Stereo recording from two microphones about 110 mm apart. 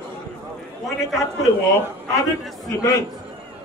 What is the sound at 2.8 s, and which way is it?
Speech, 30° left (ahead or behind).